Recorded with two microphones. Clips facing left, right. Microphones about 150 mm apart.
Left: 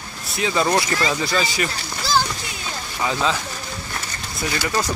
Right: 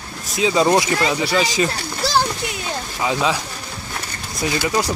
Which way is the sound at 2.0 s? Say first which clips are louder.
Right 1 dB; 70° right (ahead or behind).